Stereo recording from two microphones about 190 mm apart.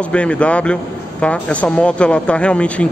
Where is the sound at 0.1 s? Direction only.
5° left (ahead or behind).